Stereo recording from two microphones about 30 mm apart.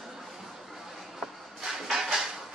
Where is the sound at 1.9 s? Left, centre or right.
Centre.